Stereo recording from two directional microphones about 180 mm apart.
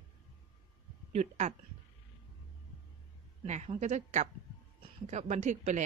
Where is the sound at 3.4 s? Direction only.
40° right (ahead or behind).